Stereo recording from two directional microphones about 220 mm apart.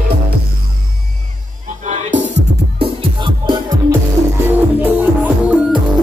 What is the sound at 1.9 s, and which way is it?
Music, 35° right (ahead or behind).